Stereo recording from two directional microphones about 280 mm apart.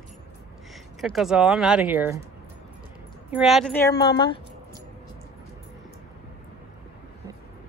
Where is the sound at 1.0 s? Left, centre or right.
Centre.